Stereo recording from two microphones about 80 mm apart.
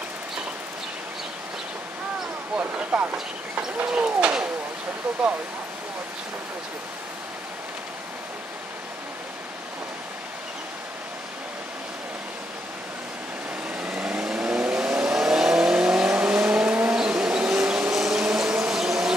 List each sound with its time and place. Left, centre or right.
2.5 s speech: centre
13.8 s vehicle: centre